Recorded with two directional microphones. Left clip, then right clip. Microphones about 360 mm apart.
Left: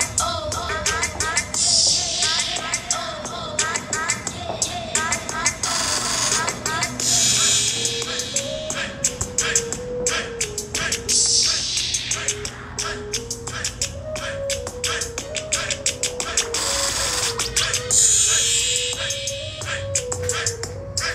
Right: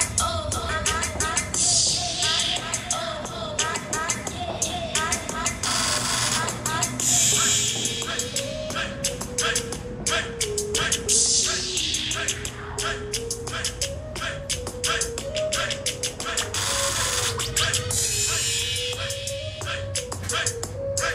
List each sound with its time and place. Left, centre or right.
0.0 s music: centre
3.5 s a sound: centre
10.0 s music: centre
11.5 s music: centre
11.8 s music: centre
14.5 s a sound: centre
18.3 s music: centre